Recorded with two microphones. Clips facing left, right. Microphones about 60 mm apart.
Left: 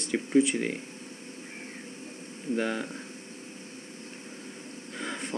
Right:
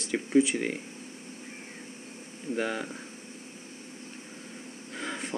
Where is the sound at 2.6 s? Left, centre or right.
Centre.